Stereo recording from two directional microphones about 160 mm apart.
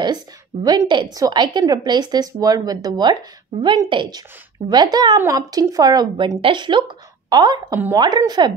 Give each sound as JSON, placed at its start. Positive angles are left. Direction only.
{"t": 0.7, "sound": "a woman's voice", "side_deg": -25}